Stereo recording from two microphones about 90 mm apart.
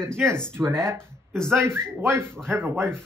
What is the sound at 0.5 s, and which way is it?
Speech, 30° right (ahead or behind).